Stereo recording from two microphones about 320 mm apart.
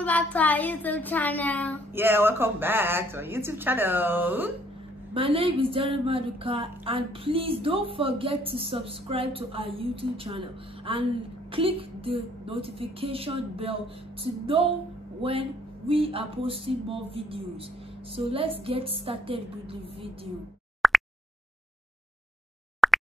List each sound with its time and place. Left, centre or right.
0.0 s speech: centre
2.0 s a woman's voice: centre
5.1 s a woman's voice: centre
15.9 s a woman's voice: centre
20.8 s a sound: centre
22.8 s a sound: centre